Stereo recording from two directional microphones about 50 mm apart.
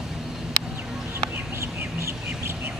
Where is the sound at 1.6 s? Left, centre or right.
Right.